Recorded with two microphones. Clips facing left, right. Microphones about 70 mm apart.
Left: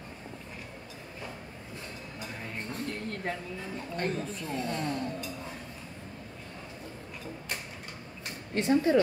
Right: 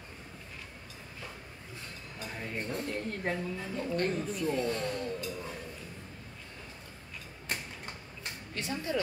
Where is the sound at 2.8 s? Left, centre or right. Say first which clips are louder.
Even; centre.